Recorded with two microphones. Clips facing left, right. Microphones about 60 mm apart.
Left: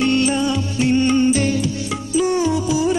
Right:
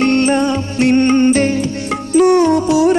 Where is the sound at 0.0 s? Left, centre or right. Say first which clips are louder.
Right 5 dB; right.